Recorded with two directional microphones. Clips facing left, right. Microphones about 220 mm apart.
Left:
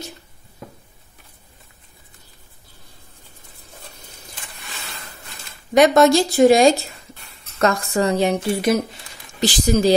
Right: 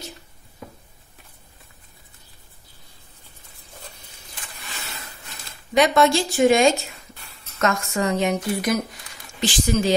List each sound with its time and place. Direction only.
5.8 s speech: 40° left (ahead or behind)